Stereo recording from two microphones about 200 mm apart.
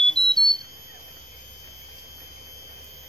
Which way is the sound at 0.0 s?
Centre (ahead or behind).